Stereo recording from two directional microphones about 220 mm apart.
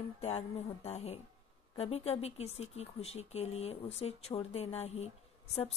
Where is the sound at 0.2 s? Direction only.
30° left (ahead or behind).